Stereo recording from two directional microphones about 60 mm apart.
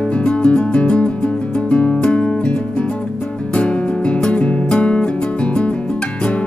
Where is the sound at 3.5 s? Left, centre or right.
Centre.